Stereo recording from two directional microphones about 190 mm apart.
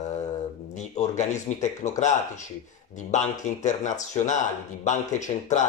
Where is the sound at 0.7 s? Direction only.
35° left (ahead or behind).